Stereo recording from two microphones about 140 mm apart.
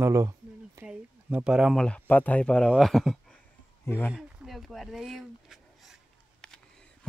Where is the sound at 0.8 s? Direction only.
5° right (ahead or behind).